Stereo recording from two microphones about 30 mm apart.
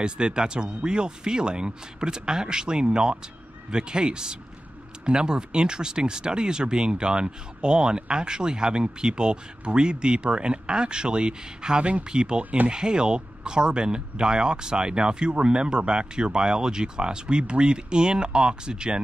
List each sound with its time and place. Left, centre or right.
0.0 s speech: right